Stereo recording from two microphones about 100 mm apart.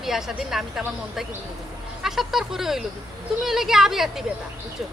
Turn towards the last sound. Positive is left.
turn(degrees=-5)  # may be behind; listen again after turning